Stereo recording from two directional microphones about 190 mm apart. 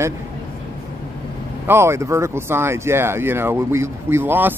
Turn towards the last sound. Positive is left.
turn(degrees=-10)  # may be behind; listen again after turning